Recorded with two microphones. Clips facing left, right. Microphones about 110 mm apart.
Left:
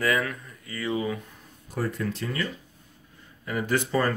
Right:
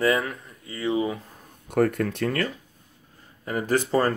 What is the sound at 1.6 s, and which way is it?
Speech, 60° right (ahead or behind).